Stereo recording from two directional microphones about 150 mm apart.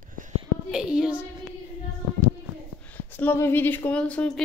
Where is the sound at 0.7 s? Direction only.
5° right (ahead or behind).